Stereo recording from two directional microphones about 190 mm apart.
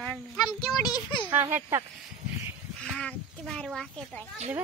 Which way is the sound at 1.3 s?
10° right (ahead or behind).